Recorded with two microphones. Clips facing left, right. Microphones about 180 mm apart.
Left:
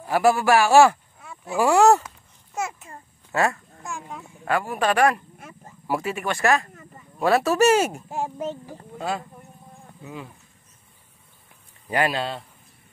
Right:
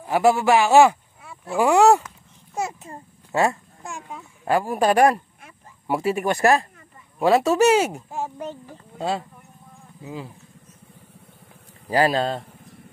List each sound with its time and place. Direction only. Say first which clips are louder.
0.0 s speech: right 1 dB; 20° right (ahead or behind)
1.2 s a sound: right 1 dB; centre (ahead or behind)
1.6 s speech: right 1 dB; 15° right (ahead or behind)
2.5 s a man's voice: right 2 dB; 35° right (ahead or behind)
5.9 s a man's voice: right 4 dB; 25° right (ahead or behind)
7.2 s speech: right 2 dB; 20° right (ahead or behind)
8.4 s speech: left 3 dB; 5° left (ahead or behind)
8.9 s speech: right 3 dB; 25° right (ahead or behind)
11.9 s a man's voice: right 4 dB; 35° right (ahead or behind)